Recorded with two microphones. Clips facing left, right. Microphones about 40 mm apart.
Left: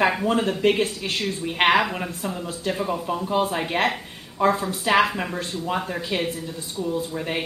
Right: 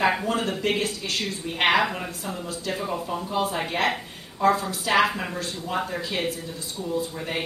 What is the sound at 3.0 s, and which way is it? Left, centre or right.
Speech, centre.